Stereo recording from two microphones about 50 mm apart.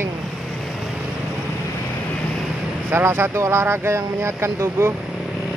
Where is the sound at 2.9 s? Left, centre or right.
Right.